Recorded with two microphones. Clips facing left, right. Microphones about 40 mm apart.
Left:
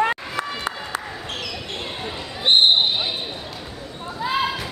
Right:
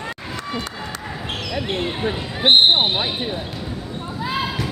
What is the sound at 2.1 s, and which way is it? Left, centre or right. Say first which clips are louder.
Basketball bounce: right 3 dB; right.